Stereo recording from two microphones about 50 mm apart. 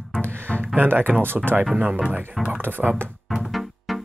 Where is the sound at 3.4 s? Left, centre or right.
Centre.